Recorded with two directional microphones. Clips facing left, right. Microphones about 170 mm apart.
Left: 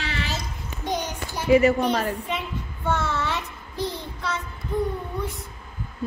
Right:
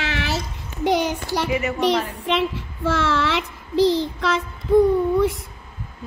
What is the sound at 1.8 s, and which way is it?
A child's voice, 90° right.